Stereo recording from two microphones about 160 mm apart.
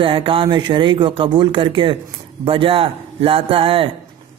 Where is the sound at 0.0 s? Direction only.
35° right (ahead or behind).